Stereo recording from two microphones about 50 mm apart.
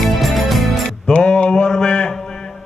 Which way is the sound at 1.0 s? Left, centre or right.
Left.